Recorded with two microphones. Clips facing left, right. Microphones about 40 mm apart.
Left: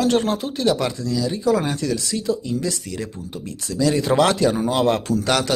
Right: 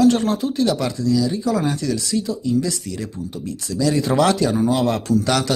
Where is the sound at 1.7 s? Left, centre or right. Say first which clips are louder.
Right 2 dB; left.